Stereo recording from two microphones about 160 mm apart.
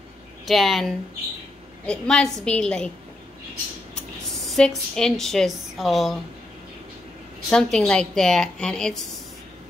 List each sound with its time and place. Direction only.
0.5 s a woman's voice: centre (ahead or behind)
4.5 s a woman's voice: 5° left (ahead or behind)
7.4 s a woman's voice: 5° left (ahead or behind)